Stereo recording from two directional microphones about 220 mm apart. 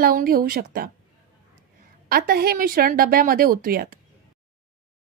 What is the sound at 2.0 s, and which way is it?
A woman's voice, 45° right (ahead or behind).